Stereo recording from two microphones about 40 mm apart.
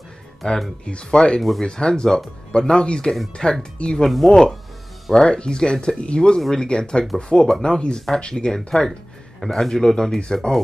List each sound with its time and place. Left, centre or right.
0.8 s speech: left
4.3 s speech: centre
8.5 s speech: centre